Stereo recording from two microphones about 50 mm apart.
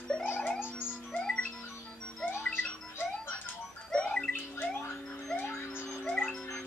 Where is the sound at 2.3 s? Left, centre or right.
Left.